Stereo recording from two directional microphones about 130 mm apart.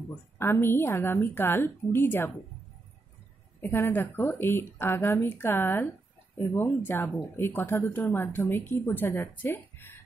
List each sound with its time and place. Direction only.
0.4 s speech: 20° left (ahead or behind)
3.6 s speech: 15° left (ahead or behind)